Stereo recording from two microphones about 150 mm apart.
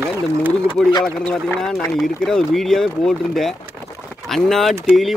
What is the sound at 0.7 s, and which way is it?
Speech, 30° left (ahead or behind).